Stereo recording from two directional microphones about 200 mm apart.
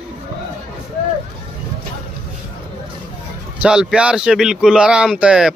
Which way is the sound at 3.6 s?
5° right (ahead or behind).